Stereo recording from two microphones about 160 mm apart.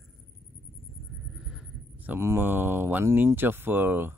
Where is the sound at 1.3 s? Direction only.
5° right (ahead or behind).